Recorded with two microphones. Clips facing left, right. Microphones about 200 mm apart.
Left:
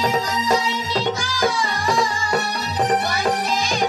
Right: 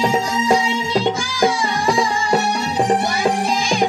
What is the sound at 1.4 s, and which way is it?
Music, 50° right (ahead or behind).